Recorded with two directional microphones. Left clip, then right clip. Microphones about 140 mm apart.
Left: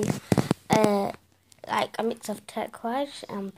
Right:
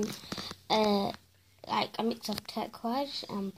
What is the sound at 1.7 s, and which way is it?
Speech, 15° left (ahead or behind).